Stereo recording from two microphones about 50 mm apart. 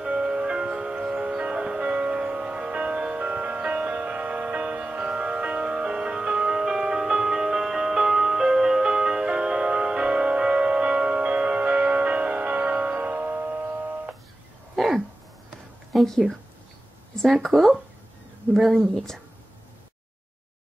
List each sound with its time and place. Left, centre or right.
0.0 s wind chime: centre
14.8 s a sound: centre
17.1 s speech: centre